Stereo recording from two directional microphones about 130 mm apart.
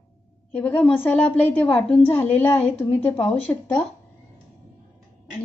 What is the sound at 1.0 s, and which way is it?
Speech, 15° left (ahead or behind).